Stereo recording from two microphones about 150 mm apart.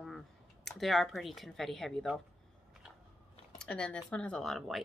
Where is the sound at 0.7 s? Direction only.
Centre (ahead or behind).